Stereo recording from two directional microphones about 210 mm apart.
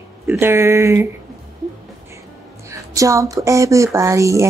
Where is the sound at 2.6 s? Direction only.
15° right (ahead or behind).